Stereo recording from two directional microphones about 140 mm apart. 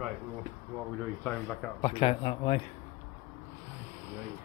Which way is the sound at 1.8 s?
40° left (ahead or behind).